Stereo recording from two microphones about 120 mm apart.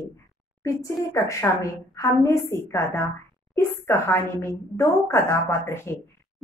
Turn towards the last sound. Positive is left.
turn(degrees=20)  # may be behind; listen again after turning